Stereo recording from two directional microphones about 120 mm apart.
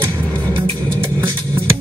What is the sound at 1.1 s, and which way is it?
Music, 20° right (ahead or behind).